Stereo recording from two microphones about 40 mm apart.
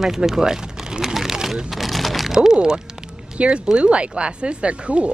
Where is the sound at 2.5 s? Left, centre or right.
Right.